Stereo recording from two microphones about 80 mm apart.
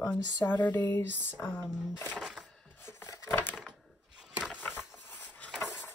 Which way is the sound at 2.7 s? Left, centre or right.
Left.